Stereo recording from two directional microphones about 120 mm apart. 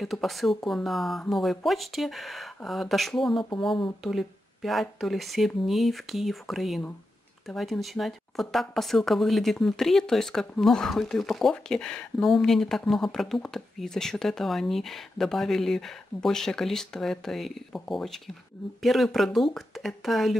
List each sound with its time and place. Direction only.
0.0 s speech: centre (ahead or behind)